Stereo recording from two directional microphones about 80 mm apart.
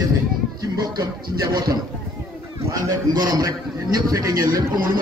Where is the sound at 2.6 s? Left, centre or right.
Right.